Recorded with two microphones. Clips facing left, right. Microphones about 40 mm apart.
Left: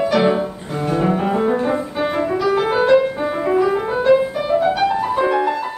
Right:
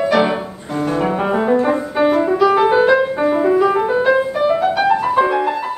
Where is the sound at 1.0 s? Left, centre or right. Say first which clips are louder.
Left 1 dB; right; by 2.9 s centre.